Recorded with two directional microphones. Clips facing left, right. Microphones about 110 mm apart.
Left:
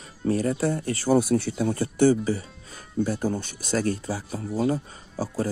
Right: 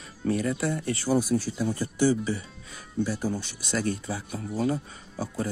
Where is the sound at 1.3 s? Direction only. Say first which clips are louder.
Left 3 dB; 65° left (ahead or behind).